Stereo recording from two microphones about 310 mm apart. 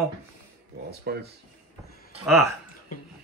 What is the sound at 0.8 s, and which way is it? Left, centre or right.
Speech, right.